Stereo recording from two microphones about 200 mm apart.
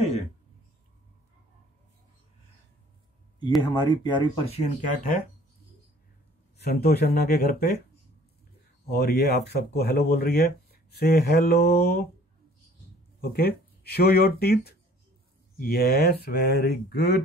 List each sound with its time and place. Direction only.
3.6 s speech: 20° left (ahead or behind); by 5.2 s 40° left (ahead or behind)
6.6 s speech: 50° left (ahead or behind)
8.9 s speech: 50° left (ahead or behind)
13.2 s speech: 50° left (ahead or behind)